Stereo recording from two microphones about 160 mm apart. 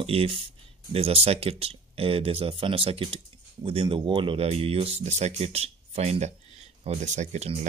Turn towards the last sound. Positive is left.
turn(degrees=-45)  # may be behind; listen again after turning